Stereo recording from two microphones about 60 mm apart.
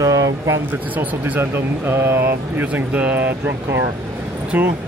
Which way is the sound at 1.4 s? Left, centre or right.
Right.